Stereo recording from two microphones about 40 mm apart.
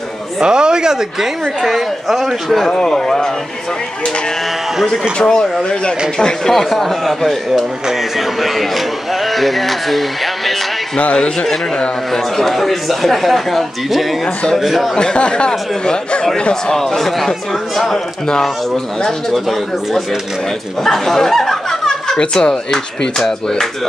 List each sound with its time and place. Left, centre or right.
0.4 s speech: centre
1.7 s speech: centre
2.7 s speech: centre
5.2 s speech: centre
6.5 s speech: centre
12.1 s speech: centre
15.0 s speech: left
16.7 s speech: centre
20.8 s chuckle: centre
22.2 s speech: centre